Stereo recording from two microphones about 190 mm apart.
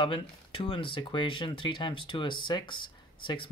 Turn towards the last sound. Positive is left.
turn(degrees=25)  # may be behind; listen again after turning